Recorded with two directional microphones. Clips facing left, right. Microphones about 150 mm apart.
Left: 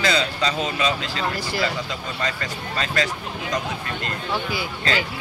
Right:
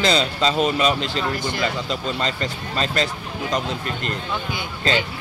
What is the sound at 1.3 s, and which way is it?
Speech, 5° left (ahead or behind).